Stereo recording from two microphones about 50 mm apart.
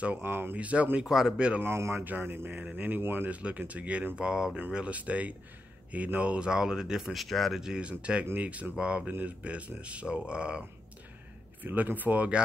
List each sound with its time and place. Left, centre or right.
0.2 s speech: right
0.6 s speech: right
1.0 s speech: centre
1.6 s speech: right
2.0 s speech: right
2.5 s speech: right
3.0 s speech: right
3.3 s speech: right; by 7.6 s centre
7.6 s speech: right
11.6 s speech: right